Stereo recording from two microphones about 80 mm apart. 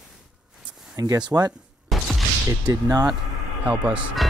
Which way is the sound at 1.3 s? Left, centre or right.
Right.